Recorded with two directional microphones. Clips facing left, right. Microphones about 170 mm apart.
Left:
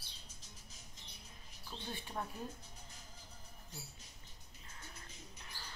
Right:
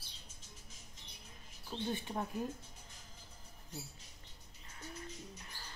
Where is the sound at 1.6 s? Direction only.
20° right (ahead or behind).